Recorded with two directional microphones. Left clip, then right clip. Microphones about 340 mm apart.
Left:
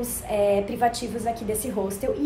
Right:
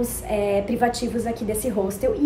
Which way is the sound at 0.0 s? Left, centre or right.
Centre.